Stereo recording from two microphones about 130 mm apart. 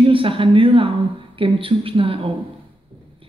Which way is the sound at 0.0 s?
40° right (ahead or behind).